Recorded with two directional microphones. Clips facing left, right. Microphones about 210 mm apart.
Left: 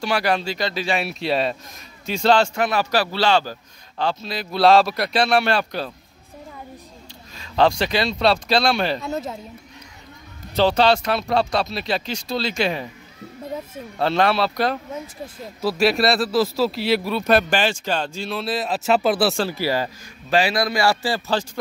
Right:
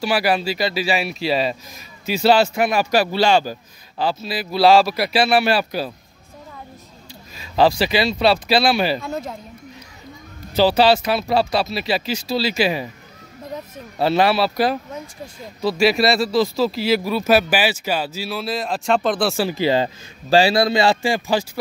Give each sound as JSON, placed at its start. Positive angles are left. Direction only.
{"t": 0.0, "sound": "a man's voice", "side_deg": -5}
{"t": 7.3, "sound": "speech", "side_deg": -5}
{"t": 10.5, "sound": "speech", "side_deg": -5}
{"t": 13.9, "sound": "speech", "side_deg": -5}
{"t": 19.3, "sound": "a man's voice", "side_deg": -15}